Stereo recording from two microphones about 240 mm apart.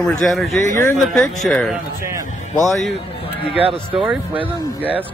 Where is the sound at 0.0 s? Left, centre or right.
Centre.